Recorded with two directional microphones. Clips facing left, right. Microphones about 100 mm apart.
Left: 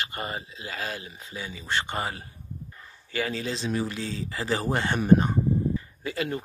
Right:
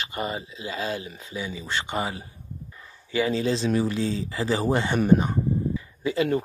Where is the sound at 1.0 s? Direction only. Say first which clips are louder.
Right 4 dB; 30° left (ahead or behind).